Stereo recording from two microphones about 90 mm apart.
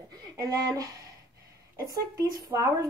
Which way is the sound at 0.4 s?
40° right (ahead or behind).